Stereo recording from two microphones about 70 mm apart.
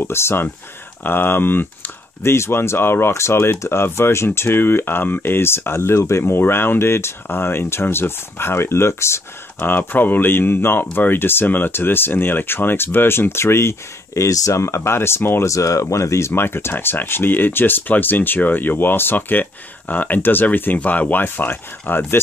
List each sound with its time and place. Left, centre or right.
0.0 s speech: left
15.5 s speech: left